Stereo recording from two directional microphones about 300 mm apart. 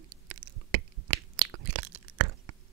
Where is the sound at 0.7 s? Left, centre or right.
Right.